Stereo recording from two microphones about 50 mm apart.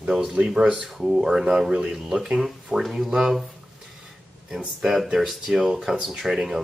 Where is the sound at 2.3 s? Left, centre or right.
Centre.